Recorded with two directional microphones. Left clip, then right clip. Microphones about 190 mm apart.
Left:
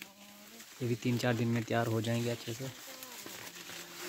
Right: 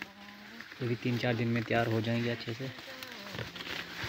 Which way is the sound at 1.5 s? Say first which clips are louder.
Right 3 dB; 25° left (ahead or behind).